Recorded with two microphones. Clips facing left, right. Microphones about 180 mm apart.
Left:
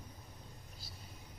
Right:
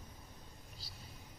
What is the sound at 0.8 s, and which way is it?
Vehicle, 50° left (ahead or behind).